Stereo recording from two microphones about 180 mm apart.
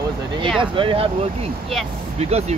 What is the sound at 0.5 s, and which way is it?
Speech, 30° right (ahead or behind).